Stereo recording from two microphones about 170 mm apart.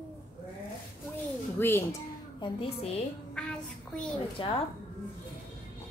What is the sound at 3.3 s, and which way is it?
Child singing, 5° left (ahead or behind).